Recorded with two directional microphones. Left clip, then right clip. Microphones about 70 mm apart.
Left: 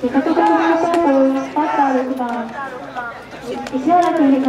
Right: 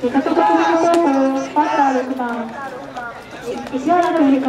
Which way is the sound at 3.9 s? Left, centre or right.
Right.